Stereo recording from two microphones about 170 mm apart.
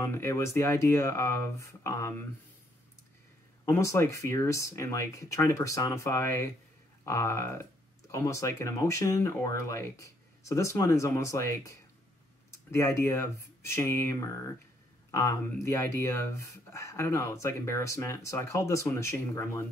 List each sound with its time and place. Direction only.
0.0 s speech: 15° left (ahead or behind)
3.6 s speech: 15° left (ahead or behind)